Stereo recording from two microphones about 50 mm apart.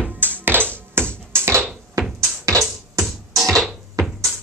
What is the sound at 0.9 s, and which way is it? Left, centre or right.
Music, right.